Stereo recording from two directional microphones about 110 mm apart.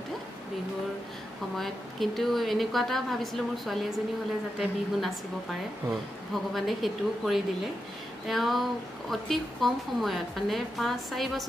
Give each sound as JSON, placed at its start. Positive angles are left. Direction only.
{"t": 1.6, "sound": "a woman's voice", "side_deg": 0}